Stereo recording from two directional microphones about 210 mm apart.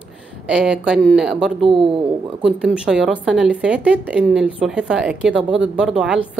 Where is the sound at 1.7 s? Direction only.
25° right (ahead or behind).